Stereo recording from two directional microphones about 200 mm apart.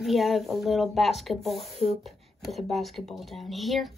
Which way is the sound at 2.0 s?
Centre (ahead or behind).